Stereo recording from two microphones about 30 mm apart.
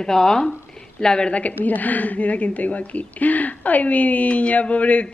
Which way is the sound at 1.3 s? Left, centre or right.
Left.